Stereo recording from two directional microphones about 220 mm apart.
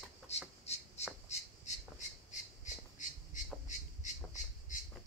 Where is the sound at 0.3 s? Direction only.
30° left (ahead or behind).